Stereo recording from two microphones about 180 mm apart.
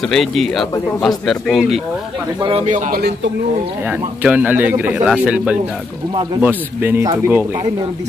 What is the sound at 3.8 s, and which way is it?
Speech, 10° right (ahead or behind).